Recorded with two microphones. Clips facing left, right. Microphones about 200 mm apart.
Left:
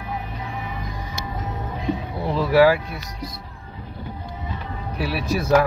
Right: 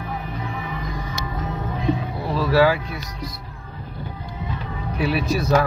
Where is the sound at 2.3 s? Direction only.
15° left (ahead or behind).